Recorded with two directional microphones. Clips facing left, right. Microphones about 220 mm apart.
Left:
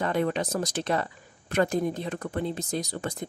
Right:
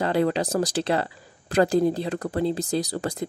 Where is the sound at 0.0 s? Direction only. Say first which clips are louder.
Right 4 dB; 30° right (ahead or behind).